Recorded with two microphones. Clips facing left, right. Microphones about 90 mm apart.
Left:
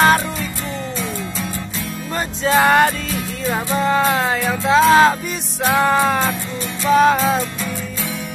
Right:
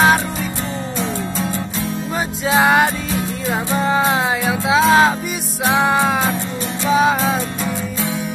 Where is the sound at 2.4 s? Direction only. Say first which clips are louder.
Left 1 dB; 5° right (ahead or behind).